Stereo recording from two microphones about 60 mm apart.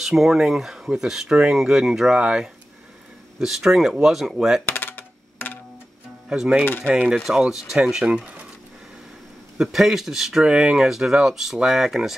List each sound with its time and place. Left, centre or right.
0.0 s speech: centre
4.6 s a sound: left
6.9 s speech: right
7.2 s speech: centre
9.6 s speech: centre
10.4 s speech: centre